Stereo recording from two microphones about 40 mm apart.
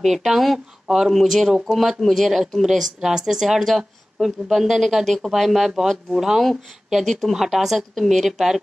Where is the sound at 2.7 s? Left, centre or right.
Centre.